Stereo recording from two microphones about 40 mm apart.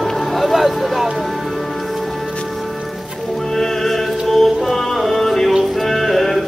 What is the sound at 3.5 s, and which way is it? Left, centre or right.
Music, centre.